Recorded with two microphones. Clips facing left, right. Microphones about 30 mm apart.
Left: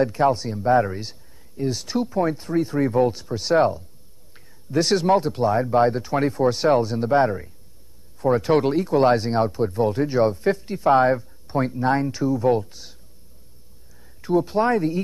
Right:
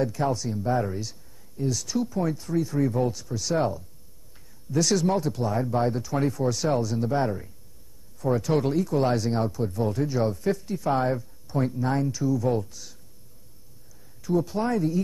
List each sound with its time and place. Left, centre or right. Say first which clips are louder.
0.0 s speech: left 6 dB; left
14.2 s speech: left 6 dB; left